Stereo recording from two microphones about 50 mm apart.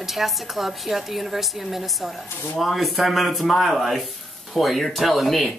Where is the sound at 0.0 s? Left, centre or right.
Centre.